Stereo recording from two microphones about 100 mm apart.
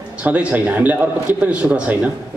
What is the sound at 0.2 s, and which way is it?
A man's voice, 15° right (ahead or behind).